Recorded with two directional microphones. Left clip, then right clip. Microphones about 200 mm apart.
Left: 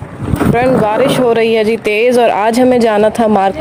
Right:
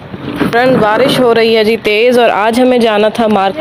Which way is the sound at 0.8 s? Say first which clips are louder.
Right 2 dB; centre (ahead or behind).